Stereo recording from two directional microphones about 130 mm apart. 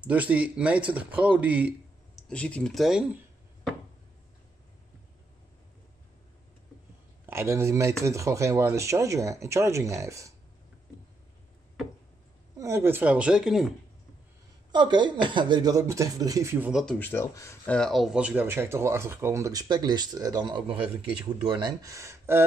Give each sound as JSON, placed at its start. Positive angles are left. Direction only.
{"t": 0.0, "sound": "speech", "side_deg": -10}
{"t": 2.1, "sound": "speech", "side_deg": 5}
{"t": 7.2, "sound": "speech", "side_deg": -20}
{"t": 12.5, "sound": "speech", "side_deg": -20}
{"t": 14.7, "sound": "speech", "side_deg": -35}
{"t": 16.5, "sound": "speech", "side_deg": -10}
{"t": 16.8, "sound": "speech", "side_deg": 10}
{"t": 17.7, "sound": "speech", "side_deg": 0}